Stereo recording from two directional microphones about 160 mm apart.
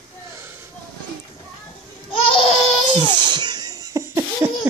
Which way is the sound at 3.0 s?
25° right (ahead or behind).